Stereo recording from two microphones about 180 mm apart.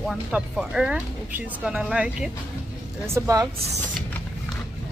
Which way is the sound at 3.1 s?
15° right (ahead or behind).